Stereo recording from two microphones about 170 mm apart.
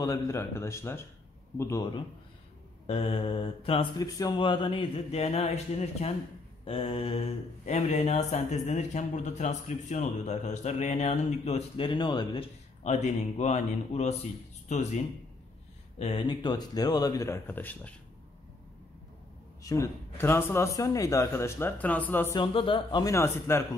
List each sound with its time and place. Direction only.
0.0 s speech: 20° left (ahead or behind)
2.9 s speech: 35° left (ahead or behind)
4.0 s speech: 20° left (ahead or behind)
12.8 s speech: 40° left (ahead or behind)
16.0 s speech: 30° left (ahead or behind); by 17.9 s 10° left (ahead or behind)
19.6 s speech: 20° left (ahead or behind)
22.3 s speech: 30° left (ahead or behind)